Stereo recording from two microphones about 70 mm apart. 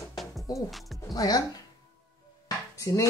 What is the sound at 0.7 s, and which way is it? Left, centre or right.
Speech, centre.